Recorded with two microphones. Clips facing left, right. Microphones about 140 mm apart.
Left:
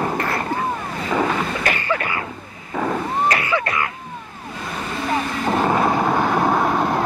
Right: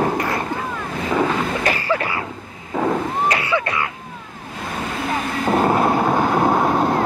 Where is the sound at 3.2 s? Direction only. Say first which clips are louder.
Even; 20° right (ahead or behind).